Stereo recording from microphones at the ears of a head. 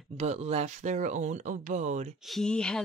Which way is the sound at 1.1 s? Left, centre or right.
Right.